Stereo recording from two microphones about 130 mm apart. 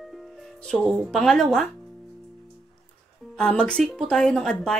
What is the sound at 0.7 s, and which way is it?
A woman's voice, 5° left (ahead or behind).